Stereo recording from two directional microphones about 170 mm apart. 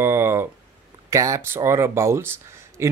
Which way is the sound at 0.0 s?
15° right (ahead or behind).